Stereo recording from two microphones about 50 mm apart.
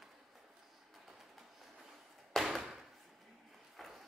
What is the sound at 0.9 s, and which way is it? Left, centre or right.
Train, centre.